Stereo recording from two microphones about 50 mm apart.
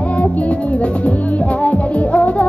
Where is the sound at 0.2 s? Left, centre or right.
Left.